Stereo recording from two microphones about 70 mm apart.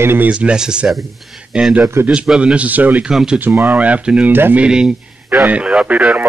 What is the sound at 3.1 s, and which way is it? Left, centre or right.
Speech, centre.